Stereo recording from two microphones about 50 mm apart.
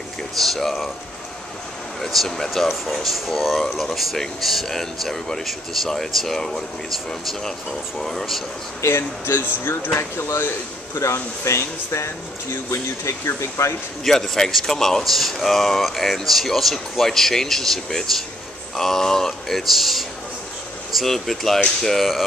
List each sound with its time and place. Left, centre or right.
0.4 s speech: centre
2.0 s speech: centre
8.0 s speech: centre
8.8 s speech: left
9.9 s speech: left
11.0 s speech: left
14.0 s speech: centre